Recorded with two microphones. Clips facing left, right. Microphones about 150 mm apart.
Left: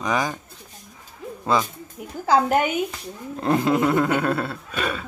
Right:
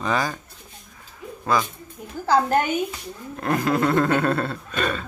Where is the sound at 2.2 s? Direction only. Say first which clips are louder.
Left 1 dB; 10° left (ahead or behind).